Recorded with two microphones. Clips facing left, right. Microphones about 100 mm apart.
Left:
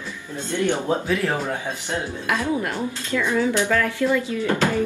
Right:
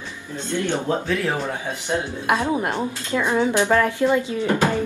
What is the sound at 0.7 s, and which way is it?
Speech, 15° left (ahead or behind).